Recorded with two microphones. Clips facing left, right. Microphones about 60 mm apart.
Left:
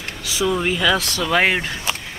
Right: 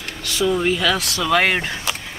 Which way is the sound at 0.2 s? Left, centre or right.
Centre.